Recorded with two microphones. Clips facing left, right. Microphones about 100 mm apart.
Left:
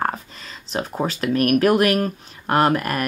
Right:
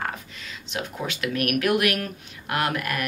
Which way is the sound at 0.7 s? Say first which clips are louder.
Left 7 dB; 35° left (ahead or behind).